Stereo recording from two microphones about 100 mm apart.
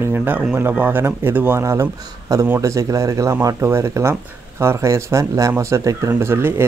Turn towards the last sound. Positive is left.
turn(degrees=-25)  # may be behind; listen again after turning